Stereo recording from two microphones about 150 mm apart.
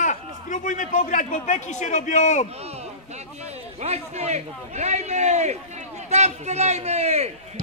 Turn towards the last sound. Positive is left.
turn(degrees=-45)  # may be behind; listen again after turning